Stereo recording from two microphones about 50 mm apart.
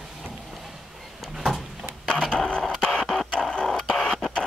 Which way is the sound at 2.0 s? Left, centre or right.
Centre.